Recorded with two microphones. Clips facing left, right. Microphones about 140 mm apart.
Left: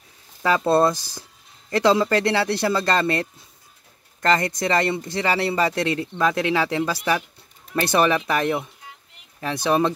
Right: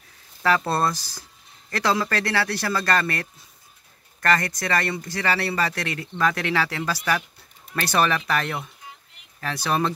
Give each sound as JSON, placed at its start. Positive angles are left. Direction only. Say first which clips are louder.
{"t": 0.4, "sound": "speech", "louder": "left 4 dB", "side_deg": 20}